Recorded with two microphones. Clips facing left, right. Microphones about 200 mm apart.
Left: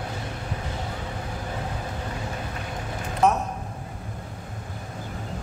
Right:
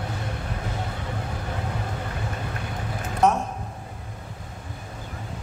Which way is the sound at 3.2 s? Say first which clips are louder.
Right 1 dB; centre (ahead or behind).